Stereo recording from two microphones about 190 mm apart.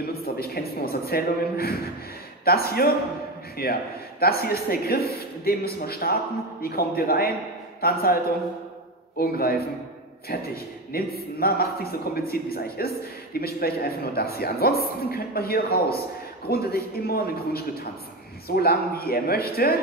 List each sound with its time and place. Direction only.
0.2 s a woman's voice: 55° left (ahead or behind)
9.2 s speech: 55° left (ahead or behind)